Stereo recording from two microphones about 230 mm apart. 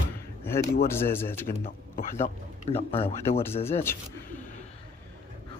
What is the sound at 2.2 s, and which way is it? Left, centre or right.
Speech, left.